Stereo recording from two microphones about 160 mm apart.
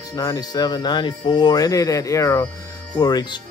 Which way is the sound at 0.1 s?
20° left (ahead or behind).